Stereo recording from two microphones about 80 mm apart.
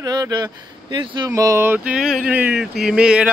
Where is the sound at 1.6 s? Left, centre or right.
Right.